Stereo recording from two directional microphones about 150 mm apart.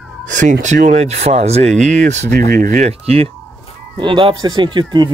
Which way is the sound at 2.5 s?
65° right (ahead or behind).